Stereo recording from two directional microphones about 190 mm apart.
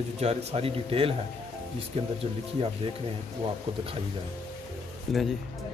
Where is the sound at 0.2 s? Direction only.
35° right (ahead or behind).